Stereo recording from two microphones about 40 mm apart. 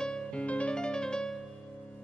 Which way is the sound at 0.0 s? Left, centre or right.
Centre.